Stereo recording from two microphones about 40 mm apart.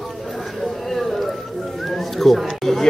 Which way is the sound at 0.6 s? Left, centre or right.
Centre.